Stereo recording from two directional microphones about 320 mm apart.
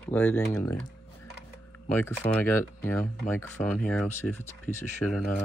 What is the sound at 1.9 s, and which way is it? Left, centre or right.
Speech, centre.